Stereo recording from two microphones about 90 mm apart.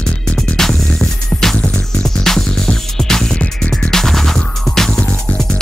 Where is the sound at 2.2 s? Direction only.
5° left (ahead or behind).